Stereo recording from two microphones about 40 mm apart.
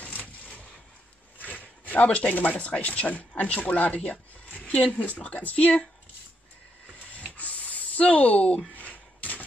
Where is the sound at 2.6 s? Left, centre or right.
Left.